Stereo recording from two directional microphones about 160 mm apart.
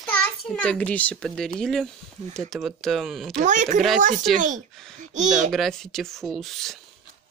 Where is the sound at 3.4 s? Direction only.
50° right (ahead or behind).